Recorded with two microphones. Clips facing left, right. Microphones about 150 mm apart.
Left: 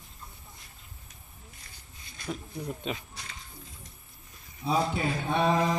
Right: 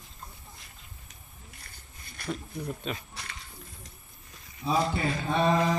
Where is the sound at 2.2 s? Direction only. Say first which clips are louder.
Right 1 dB; 65° right (ahead or behind).